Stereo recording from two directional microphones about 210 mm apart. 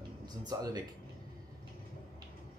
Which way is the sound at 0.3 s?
20° right (ahead or behind).